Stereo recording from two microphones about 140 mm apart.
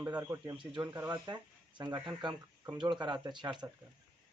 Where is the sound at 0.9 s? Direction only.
25° right (ahead or behind).